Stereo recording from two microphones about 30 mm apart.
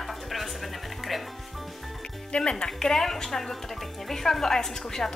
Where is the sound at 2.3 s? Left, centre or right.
Left.